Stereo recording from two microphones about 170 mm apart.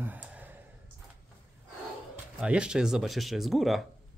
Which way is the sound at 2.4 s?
5° right (ahead or behind).